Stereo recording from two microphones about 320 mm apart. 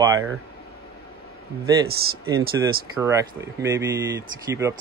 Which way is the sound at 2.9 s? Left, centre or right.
Centre.